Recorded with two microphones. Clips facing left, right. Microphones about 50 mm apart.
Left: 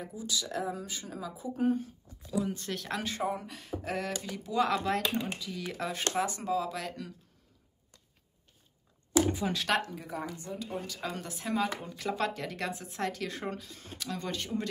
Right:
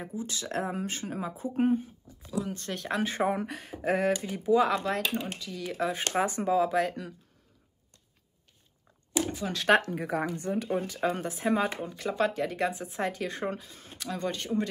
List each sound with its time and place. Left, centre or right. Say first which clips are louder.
0.0 s speech: right 1 dB; right
2.4 s speech: even; centre
3.1 s speech: right 5 dB; right
4.6 s speech: even; centre
6.1 s speech: right 6 dB; right
9.3 s speech: left 2 dB; centre
9.8 s speech: right 6 dB; right
11.8 s speech: right 4 dB; centre